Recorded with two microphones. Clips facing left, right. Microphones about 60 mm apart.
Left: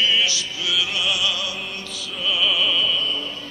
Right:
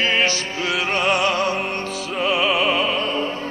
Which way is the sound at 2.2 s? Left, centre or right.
Right.